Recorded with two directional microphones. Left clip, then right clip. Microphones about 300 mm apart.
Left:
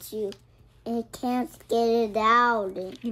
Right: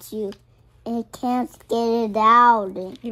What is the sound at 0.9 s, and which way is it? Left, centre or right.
Speech, centre.